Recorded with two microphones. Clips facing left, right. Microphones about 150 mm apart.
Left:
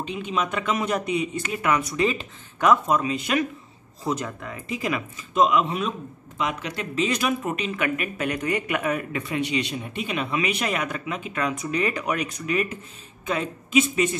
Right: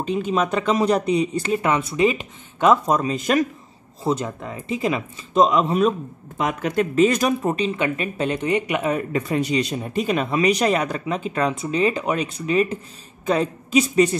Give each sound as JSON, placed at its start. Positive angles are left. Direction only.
{"t": 0.0, "sound": "speech", "side_deg": -40}
{"t": 2.9, "sound": "speech", "side_deg": -40}
{"t": 4.0, "sound": "speech", "side_deg": -25}
{"t": 9.1, "sound": "speech", "side_deg": -40}